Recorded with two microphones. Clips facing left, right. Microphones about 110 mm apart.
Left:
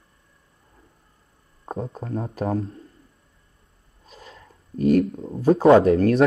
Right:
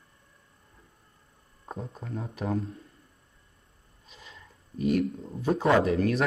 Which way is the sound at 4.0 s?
40° left (ahead or behind).